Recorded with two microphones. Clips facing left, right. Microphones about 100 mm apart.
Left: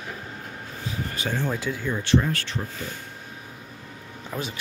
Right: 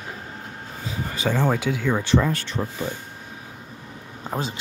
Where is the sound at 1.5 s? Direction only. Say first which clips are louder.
Right 5 dB; 75° right (ahead or behind).